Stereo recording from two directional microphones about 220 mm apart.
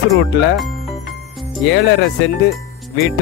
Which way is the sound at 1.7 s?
55° left (ahead or behind).